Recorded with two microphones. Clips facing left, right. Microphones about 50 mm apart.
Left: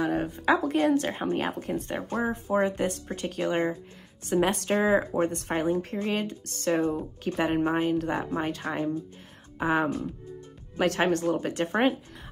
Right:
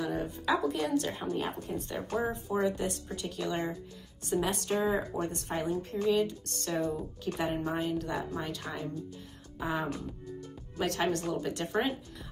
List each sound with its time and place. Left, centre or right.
0.0 s a woman's voice: left
5.2 s speech: left
7.3 s a woman's voice: left
7.6 s speech: left
9.6 s speech: left
10.9 s speech: left